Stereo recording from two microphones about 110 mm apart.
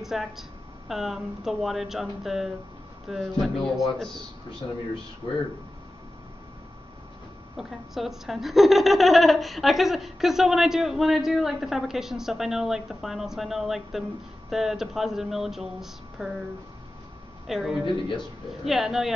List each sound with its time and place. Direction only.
0.0 s a woman's voice: 5° right (ahead or behind)
4.6 s speech: 35° left (ahead or behind)
7.5 s a woman's voice: 5° right (ahead or behind)
17.5 s a woman's voice: 5° right (ahead or behind)
17.8 s speech: 50° left (ahead or behind)
18.5 s a woman's voice: centre (ahead or behind)